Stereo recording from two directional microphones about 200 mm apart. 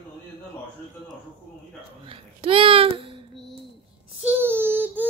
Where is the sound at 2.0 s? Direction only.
25° right (ahead or behind).